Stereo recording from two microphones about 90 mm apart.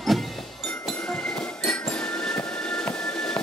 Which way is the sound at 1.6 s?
10° left (ahead or behind).